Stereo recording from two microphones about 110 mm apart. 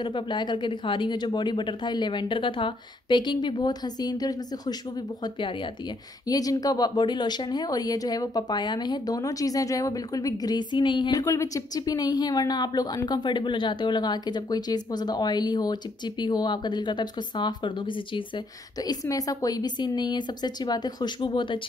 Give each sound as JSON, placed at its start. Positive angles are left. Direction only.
{"t": 0.0, "sound": "speech", "side_deg": 40}
{"t": 6.2, "sound": "speech", "side_deg": 35}